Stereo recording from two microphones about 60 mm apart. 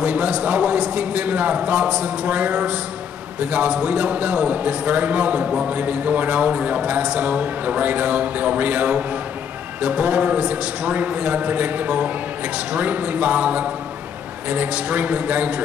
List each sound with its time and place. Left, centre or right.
0.0 s a man's voice: right